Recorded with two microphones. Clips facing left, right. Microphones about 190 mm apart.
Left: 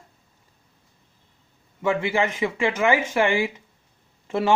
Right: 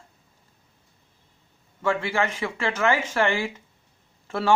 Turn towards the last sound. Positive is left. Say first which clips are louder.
# left 1 dB
turn(degrees=15)  # may be behind; listen again after turning